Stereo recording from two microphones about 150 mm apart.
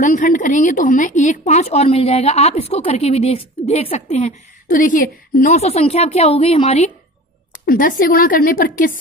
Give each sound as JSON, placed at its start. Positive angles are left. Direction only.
{"t": 0.0, "sound": "speech", "side_deg": 60}
{"t": 4.6, "sound": "speech", "side_deg": 65}
{"t": 7.6, "sound": "a woman's voice", "side_deg": 70}